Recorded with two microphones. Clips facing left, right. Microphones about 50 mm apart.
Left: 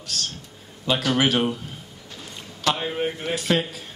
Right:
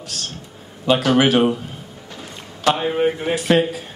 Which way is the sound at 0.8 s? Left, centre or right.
Right.